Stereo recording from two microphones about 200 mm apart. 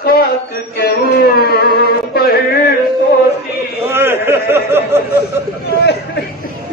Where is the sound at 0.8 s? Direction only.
50° left (ahead or behind).